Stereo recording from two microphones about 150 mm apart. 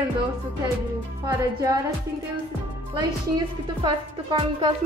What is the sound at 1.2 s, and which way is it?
Speech, 25° right (ahead or behind).